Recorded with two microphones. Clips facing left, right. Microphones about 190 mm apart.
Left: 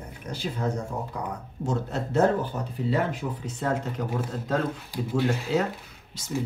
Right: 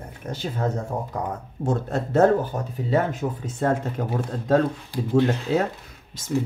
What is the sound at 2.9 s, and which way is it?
Speech, 45° right (ahead or behind).